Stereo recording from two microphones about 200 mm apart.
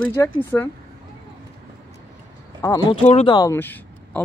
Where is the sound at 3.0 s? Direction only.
30° left (ahead or behind); by 4.2 s 10° left (ahead or behind).